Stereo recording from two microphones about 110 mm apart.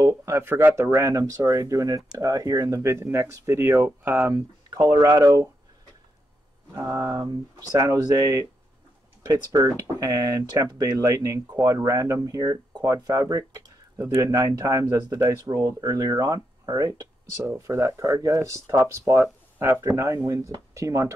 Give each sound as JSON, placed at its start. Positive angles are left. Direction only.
{"t": 0.0, "sound": "speech", "side_deg": -25}
{"t": 6.9, "sound": "speech", "side_deg": -30}